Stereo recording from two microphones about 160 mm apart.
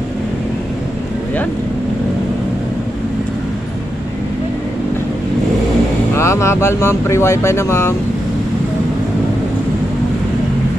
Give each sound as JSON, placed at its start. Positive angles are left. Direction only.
{"t": 6.1, "sound": "speech", "side_deg": 15}